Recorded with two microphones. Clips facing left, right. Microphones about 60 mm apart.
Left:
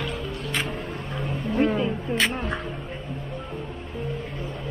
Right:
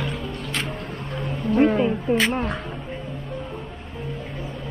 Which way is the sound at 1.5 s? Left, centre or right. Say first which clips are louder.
Right 5 dB; right.